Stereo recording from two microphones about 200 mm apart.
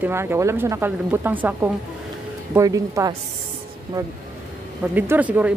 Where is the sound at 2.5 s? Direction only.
15° right (ahead or behind).